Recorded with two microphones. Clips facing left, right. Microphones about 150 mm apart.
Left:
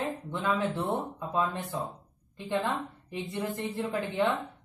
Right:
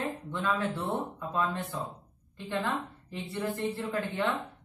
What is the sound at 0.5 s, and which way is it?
A woman's voice, 20° left (ahead or behind).